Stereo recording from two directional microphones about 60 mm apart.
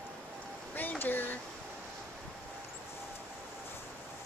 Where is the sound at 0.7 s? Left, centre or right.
Left.